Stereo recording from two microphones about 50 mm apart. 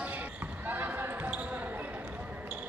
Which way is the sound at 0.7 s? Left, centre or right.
Right.